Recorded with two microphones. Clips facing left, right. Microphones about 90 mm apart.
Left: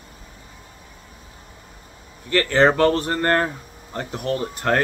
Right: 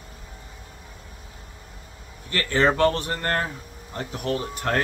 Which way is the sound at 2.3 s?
35° left (ahead or behind).